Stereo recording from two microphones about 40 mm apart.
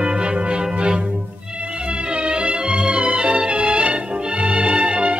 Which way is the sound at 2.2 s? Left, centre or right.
Right.